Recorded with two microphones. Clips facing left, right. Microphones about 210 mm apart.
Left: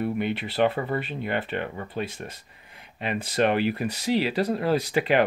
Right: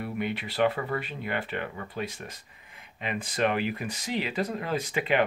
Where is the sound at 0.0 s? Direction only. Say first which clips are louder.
Left 5 dB; 30° left (ahead or behind).